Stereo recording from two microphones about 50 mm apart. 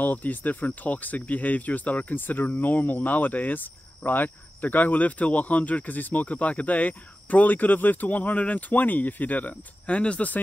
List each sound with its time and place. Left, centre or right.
0.0 s speech: left